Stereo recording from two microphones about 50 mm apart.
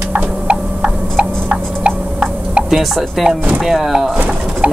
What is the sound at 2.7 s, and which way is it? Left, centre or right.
Speech, centre.